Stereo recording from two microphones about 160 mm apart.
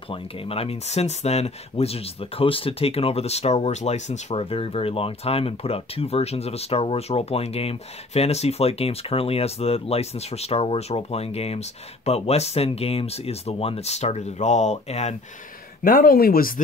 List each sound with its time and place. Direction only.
0.1 s speech: 35° left (ahead or behind)
15.8 s speech: 60° left (ahead or behind)